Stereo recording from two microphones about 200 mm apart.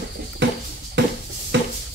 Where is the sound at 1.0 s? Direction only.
60° right (ahead or behind).